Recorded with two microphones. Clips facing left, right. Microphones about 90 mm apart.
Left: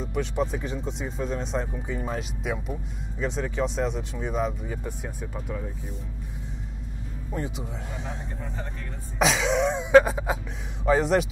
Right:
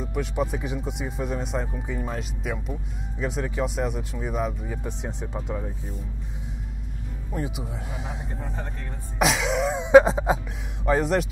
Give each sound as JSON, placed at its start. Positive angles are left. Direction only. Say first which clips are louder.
{"t": 0.0, "sound": "speech", "louder": "even", "side_deg": -5}
{"t": 4.8, "sound": "speech", "louder": "right 2 dB", "side_deg": -20}
{"t": 7.3, "sound": "speech", "louder": "right 1 dB", "side_deg": -5}
{"t": 9.2, "sound": "speech", "louder": "even", "side_deg": 0}
{"t": 9.8, "sound": "music", "louder": "right 4 dB", "side_deg": -20}
{"t": 10.9, "sound": "speech", "louder": "left 1 dB", "side_deg": 0}